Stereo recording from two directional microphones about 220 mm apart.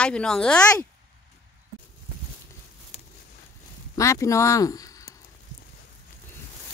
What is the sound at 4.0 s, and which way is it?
Speech, 15° left (ahead or behind).